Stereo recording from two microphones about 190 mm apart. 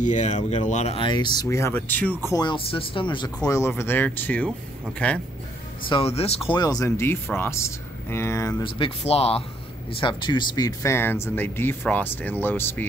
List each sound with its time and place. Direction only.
0.0 s speech: 40° left (ahead or behind); by 2.1 s 10° left (ahead or behind)
2.3 s speech: 25° left (ahead or behind)
3.4 s speech: 15° left (ahead or behind)
5.9 s speech: 30° left (ahead or behind); by 12.8 s 10° left (ahead or behind)